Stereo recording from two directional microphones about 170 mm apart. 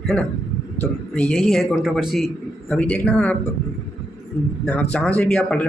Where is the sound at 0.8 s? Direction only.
5° left (ahead or behind).